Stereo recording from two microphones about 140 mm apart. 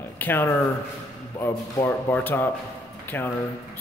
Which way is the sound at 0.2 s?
15° left (ahead or behind).